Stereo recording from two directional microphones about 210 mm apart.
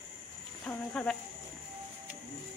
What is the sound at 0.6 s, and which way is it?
Speech, 5° left (ahead or behind).